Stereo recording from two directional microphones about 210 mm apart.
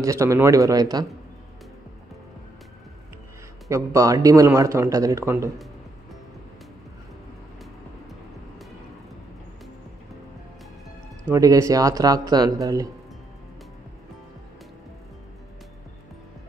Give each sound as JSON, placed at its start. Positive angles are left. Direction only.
{"t": 0.0, "sound": "a man's voice", "side_deg": -15}
{"t": 3.6, "sound": "a man's voice", "side_deg": -15}
{"t": 11.2, "sound": "a man's voice", "side_deg": -15}